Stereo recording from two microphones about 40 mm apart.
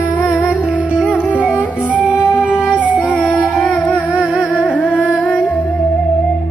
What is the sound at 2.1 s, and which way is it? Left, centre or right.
Music, right.